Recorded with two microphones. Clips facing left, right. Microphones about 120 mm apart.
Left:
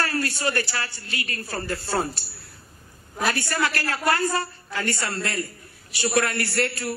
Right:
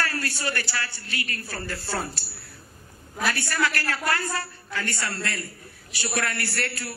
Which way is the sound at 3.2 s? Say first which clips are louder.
Left 1 dB; 25° left (ahead or behind).